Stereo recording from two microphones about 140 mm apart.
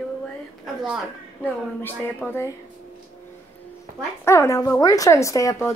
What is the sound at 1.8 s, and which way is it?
Speech, 15° left (ahead or behind).